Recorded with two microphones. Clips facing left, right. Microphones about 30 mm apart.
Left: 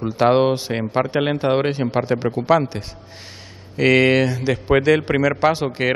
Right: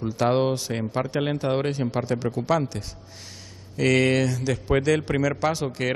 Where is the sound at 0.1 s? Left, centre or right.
Left.